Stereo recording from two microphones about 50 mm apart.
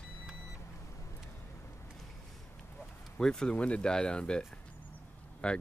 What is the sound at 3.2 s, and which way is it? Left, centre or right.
Speech, centre.